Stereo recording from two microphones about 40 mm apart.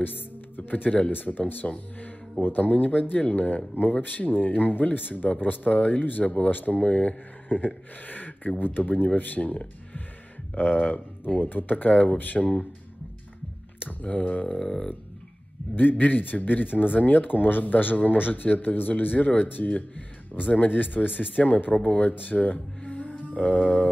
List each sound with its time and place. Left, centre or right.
0.0 s music: left
0.8 s speech: left
1.1 s speech: left
14.0 s speech: left
14.5 s a sound: centre
15.7 s speech: left
22.8 s music: left